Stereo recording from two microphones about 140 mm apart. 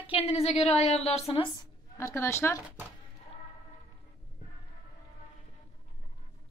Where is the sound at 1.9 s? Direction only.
20° left (ahead or behind).